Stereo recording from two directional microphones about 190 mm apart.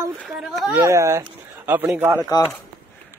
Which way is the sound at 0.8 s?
15° right (ahead or behind).